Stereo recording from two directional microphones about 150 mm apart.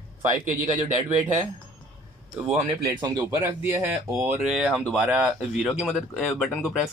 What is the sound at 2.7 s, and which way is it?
Speech, 20° right (ahead or behind).